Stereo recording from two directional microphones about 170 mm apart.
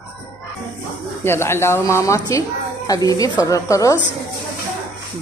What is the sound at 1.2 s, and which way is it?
A woman's voice, 15° left (ahead or behind).